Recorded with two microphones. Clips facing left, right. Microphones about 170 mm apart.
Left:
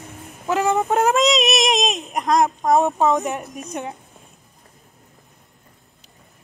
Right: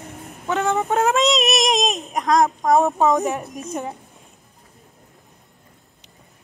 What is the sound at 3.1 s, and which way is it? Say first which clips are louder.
Speech: right 1 dB; centre (ahead or behind).